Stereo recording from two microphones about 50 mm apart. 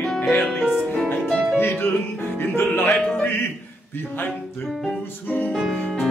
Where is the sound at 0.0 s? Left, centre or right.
Centre.